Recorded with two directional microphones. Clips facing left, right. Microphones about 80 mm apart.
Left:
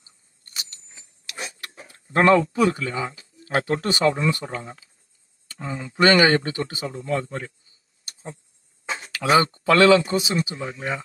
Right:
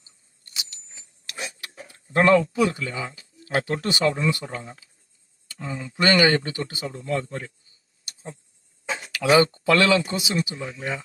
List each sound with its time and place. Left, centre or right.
0.5 s vehicle: left
1.4 s speech: left
8.0 s a sound: left
8.8 s speech: left